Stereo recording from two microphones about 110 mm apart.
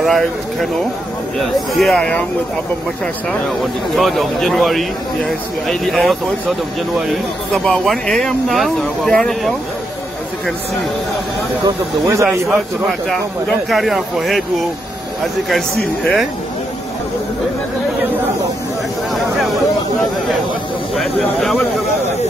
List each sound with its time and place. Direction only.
0.0 s speech: centre (ahead or behind)
1.7 s speech: centre (ahead or behind)
3.9 s speech: centre (ahead or behind)
11.6 s speech: 30° right (ahead or behind)
13.5 s speech: centre (ahead or behind)
15.5 s speech: centre (ahead or behind)
20.9 s speech: centre (ahead or behind)